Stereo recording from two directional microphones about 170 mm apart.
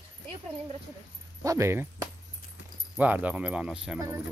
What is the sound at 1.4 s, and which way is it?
Speech, 15° right (ahead or behind).